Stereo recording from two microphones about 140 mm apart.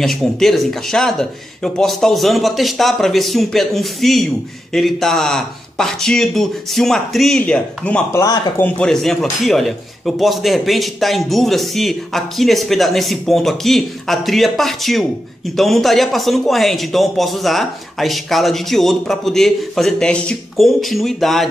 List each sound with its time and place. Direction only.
0.0 s speech: 5° left (ahead or behind)
8.1 s speech: 20° left (ahead or behind)
8.6 s speech: 5° left (ahead or behind)